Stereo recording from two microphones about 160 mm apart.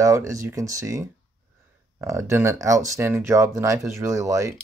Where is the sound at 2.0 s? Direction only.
20° right (ahead or behind).